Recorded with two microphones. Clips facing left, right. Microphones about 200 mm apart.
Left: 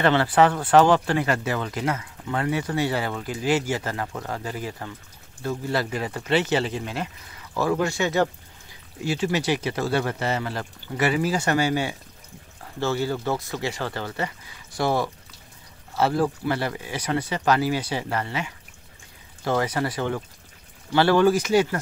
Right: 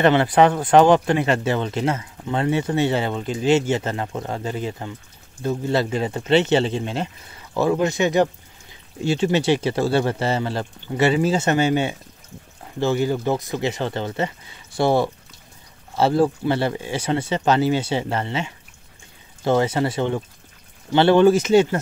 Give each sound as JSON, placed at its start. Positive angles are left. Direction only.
{"t": 0.0, "sound": "speech", "side_deg": -20}